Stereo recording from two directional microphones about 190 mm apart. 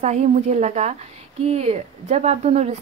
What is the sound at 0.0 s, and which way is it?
Speech, 40° right (ahead or behind).